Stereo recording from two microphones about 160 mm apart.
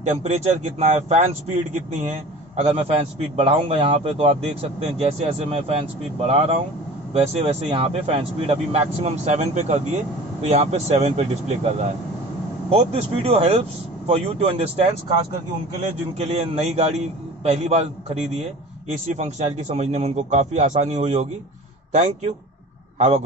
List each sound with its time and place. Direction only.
0.1 s a man's voice: 40° right (ahead or behind)
16.2 s a man's voice: 45° right (ahead or behind)
22.9 s a man's voice: 45° right (ahead or behind)